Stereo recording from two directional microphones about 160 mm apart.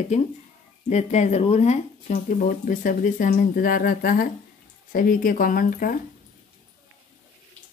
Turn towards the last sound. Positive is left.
turn(degrees=65)  # may be behind; listen again after turning